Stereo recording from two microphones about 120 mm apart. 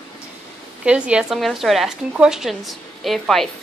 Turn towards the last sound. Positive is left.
turn(degrees=0)  # may be behind; listen again after turning